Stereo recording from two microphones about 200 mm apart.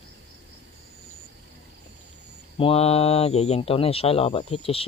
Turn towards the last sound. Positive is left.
turn(degrees=25)  # may be behind; listen again after turning